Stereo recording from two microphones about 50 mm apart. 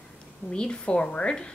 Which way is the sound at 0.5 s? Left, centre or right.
Left.